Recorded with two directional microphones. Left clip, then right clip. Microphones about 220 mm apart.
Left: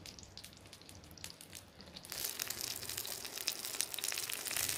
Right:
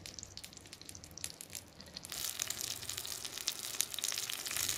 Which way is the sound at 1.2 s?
35° right (ahead or behind).